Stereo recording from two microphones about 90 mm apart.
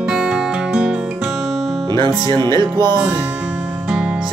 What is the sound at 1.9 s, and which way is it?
Speech, 55° right (ahead or behind).